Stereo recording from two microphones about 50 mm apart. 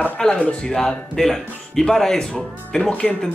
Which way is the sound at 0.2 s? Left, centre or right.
Centre.